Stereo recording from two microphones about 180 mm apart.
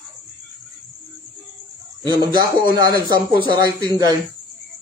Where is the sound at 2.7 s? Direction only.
20° right (ahead or behind).